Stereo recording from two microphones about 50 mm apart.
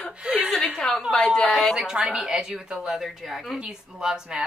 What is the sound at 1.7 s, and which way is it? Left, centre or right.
Speech, centre.